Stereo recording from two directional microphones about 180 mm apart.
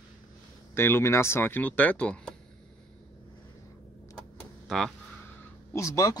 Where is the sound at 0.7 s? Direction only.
15° left (ahead or behind).